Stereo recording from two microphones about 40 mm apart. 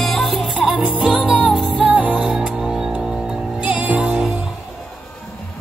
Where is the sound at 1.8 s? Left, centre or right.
Right.